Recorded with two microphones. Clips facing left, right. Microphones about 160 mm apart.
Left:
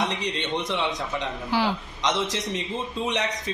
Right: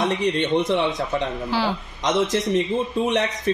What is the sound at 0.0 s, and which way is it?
Speech, 50° right (ahead or behind).